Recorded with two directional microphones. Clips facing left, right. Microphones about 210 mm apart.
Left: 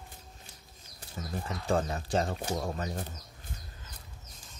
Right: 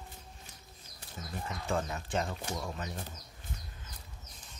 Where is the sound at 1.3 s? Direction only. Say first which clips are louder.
Left 4 dB; 35° left (ahead or behind).